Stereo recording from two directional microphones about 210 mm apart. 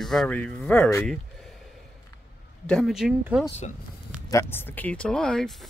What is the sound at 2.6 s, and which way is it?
Speech, centre (ahead or behind).